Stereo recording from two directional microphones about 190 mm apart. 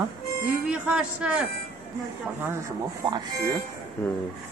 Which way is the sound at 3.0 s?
25° right (ahead or behind).